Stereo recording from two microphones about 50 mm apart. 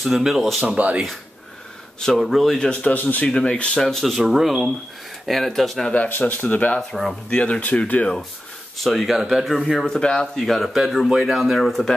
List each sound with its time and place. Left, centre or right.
0.0 s speech: centre
2.1 s speech: centre
2.6 s speech: centre
2.9 s speech: left
3.3 s speech: centre
3.8 s speech: centre
6.2 s speech: left
6.9 s speech: centre
7.2 s speech: left
8.7 s speech: centre
9.8 s speech: centre
10.4 s speech: centre